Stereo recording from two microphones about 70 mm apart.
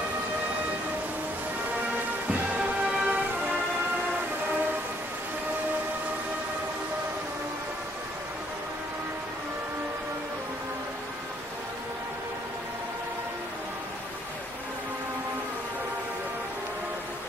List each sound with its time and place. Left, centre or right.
2.5 s music: centre